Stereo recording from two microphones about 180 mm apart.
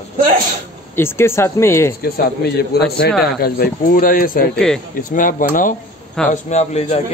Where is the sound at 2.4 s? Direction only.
65° left (ahead or behind); by 5.7 s 50° left (ahead or behind).